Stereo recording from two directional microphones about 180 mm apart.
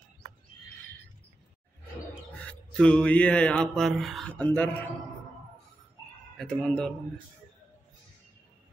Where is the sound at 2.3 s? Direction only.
5° left (ahead or behind).